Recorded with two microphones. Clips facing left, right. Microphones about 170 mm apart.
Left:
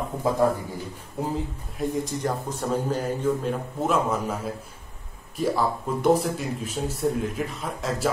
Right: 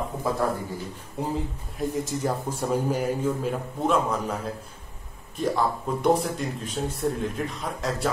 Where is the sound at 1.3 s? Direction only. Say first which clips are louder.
Even; centre (ahead or behind).